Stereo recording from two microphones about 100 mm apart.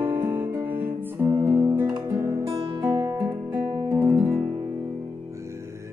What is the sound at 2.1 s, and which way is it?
Guitar, 30° right (ahead or behind).